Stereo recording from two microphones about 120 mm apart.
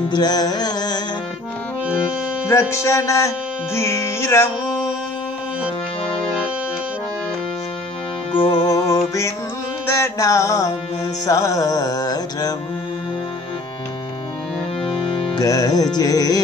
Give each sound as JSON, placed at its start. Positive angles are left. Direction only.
{"t": 0.1, "sound": "music", "side_deg": 35}
{"t": 2.4, "sound": "music", "side_deg": 25}
{"t": 8.3, "sound": "music", "side_deg": 40}
{"t": 14.8, "sound": "music", "side_deg": 50}
{"t": 15.3, "sound": "music", "side_deg": 30}